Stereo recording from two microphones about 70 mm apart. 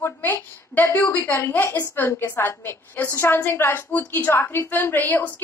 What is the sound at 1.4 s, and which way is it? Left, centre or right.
A woman's voice, left.